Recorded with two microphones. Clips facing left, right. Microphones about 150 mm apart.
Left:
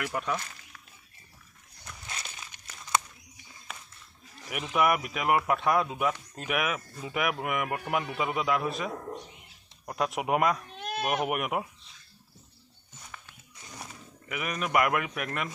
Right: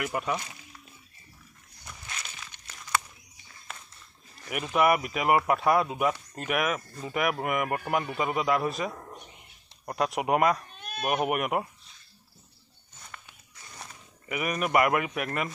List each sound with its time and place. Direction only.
0.0 s speech: 5° right (ahead or behind)
2.0 s a sound: 30° left (ahead or behind)
2.4 s crumpling: 15° left (ahead or behind)
4.5 s speech: centre (ahead or behind)
10.7 s goat: 90° left
11.1 s speech: centre (ahead or behind)
13.7 s pig: 10° left (ahead or behind)
14.3 s speech: 5° right (ahead or behind)